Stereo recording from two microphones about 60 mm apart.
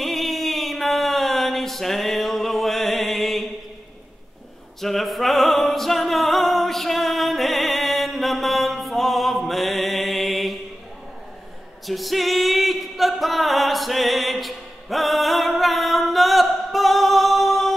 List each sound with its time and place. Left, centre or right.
0.0 s a sound: centre
4.7 s music: centre
11.8 s singing: centre